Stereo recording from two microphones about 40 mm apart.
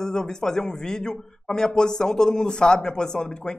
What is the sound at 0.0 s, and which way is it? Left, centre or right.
Speech, centre.